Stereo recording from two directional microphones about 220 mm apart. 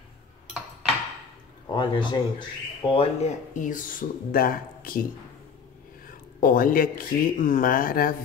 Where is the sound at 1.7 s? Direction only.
20° left (ahead or behind).